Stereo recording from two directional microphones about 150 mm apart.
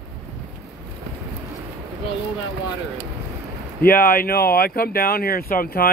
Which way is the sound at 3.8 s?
75° left (ahead or behind).